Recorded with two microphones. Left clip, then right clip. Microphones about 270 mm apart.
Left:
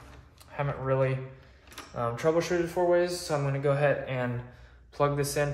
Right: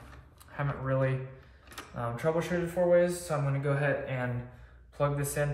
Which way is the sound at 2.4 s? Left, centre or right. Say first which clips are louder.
Left 2 dB; left.